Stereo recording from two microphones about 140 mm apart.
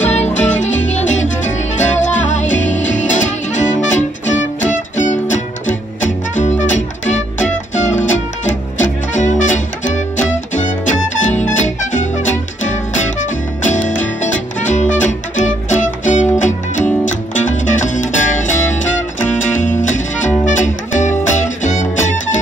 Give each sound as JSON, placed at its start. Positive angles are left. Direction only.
{"t": 0.0, "sound": "music", "side_deg": 55}
{"t": 1.8, "sound": "music", "side_deg": 60}
{"t": 7.1, "sound": "music", "side_deg": 60}